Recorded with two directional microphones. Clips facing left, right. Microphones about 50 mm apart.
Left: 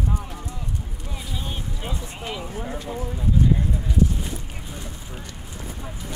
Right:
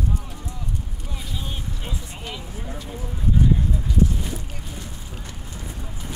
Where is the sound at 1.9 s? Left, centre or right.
Centre.